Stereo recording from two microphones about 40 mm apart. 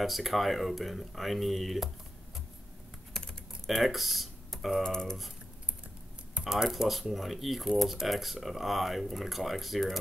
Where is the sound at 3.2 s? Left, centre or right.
Centre.